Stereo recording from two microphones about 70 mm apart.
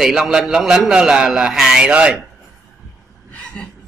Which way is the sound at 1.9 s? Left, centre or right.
Centre.